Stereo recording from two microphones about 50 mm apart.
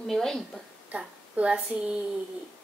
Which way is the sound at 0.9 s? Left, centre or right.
Right.